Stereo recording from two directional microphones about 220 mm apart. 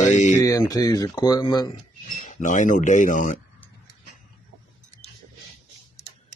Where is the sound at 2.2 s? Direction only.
35° left (ahead or behind).